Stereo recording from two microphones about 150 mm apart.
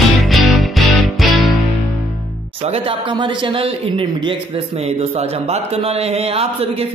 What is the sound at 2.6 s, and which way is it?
A man's voice, 40° right (ahead or behind).